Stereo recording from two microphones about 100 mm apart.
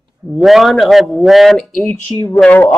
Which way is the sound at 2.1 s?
25° left (ahead or behind).